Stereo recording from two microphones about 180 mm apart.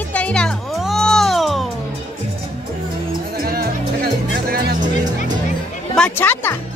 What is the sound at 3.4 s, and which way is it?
Music, 60° right (ahead or behind).